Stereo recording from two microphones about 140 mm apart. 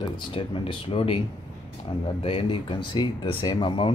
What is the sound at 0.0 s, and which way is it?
Speech, 35° left (ahead or behind).